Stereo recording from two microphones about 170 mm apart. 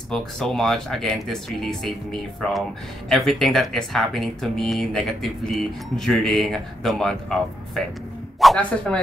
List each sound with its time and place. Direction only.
0.1 s speech: 5° left (ahead or behind)
3.1 s speech: centre (ahead or behind)